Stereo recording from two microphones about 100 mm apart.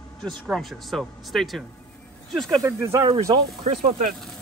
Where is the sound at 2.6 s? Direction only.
30° right (ahead or behind).